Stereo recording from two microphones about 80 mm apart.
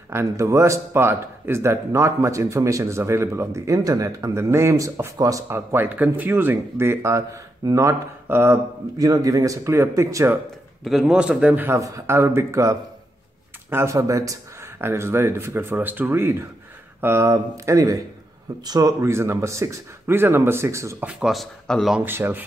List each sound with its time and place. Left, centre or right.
0.1 s speech: right
5.9 s speech: right
8.3 s speech: right
8.9 s speech: right
10.8 s speech: centre
11.1 s a man's voice: centre
11.7 s speech: right
14.8 s speech: right
17.3 s speech: right
21.0 s a man's voice: centre
21.3 s speech: centre
22.0 s speech: right